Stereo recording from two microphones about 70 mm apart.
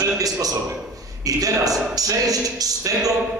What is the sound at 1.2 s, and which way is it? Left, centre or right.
A man's voice, right.